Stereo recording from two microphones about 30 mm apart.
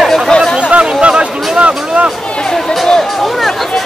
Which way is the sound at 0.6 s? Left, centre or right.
Right.